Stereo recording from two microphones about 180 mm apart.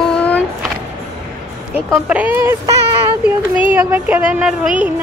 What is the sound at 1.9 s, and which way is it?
Speech, 5° right (ahead or behind).